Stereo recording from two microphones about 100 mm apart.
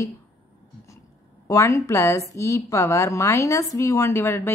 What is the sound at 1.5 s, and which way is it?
A woman's voice, 30° left (ahead or behind).